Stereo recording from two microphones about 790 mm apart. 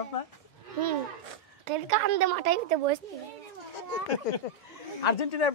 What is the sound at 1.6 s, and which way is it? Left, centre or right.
A woman's voice, right.